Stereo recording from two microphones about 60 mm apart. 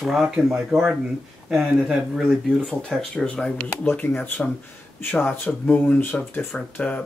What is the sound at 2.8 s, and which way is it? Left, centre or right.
Speech, centre.